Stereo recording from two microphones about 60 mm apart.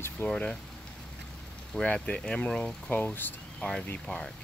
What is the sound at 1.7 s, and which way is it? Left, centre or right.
Speech, centre.